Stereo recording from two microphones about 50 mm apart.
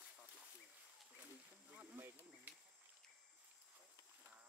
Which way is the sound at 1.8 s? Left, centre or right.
Right.